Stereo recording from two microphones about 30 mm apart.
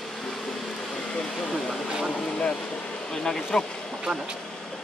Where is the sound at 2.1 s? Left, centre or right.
Left.